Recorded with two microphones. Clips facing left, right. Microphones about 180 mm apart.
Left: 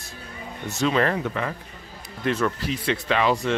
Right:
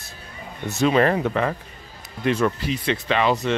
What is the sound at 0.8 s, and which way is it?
Speech, 15° right (ahead or behind).